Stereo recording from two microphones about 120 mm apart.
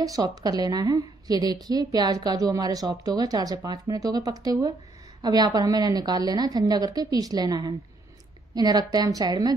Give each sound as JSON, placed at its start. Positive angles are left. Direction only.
{"t": 0.3, "sound": "a woman's voice", "side_deg": -35}